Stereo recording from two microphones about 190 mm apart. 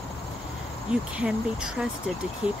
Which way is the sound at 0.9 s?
5° right (ahead or behind).